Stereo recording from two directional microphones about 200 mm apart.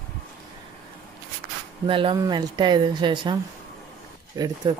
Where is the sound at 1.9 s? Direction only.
25° right (ahead or behind).